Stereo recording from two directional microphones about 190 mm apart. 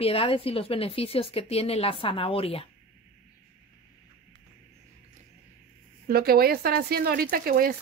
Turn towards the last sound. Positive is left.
turn(degrees=-50)  # may be behind; listen again after turning